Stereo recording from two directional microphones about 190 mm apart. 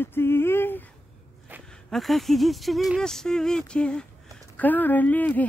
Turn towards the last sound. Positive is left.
turn(degrees=10)  # may be behind; listen again after turning